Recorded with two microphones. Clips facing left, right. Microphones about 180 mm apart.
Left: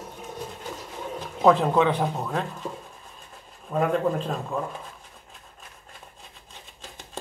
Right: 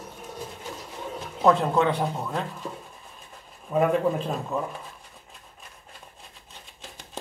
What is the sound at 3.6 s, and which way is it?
Speech, 5° right (ahead or behind).